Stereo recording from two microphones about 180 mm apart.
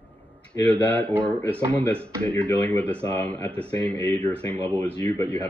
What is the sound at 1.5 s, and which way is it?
Speech, 5° left (ahead or behind).